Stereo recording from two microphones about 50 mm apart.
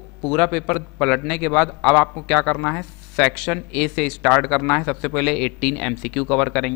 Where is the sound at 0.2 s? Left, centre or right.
Centre.